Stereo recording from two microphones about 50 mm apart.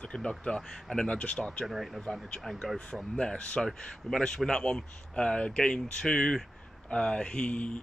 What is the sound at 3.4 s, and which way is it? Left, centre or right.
Speech, left.